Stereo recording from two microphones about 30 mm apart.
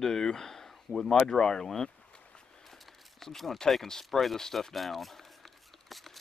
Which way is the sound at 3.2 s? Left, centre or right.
Centre.